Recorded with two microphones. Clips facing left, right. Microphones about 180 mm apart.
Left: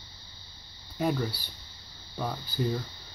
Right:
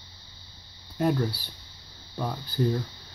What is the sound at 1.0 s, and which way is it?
Speech, centre (ahead or behind).